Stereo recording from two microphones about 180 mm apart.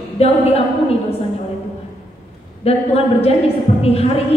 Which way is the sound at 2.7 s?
35° left (ahead or behind).